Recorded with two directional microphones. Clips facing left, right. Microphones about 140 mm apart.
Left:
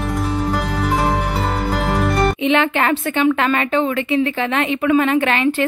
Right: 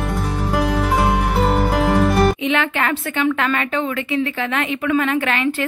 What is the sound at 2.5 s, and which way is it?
A woman's voice, 25° left (ahead or behind).